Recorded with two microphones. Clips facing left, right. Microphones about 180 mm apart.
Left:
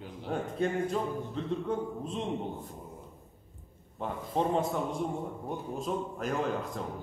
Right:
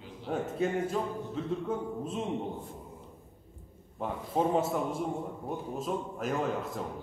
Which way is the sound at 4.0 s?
5° right (ahead or behind).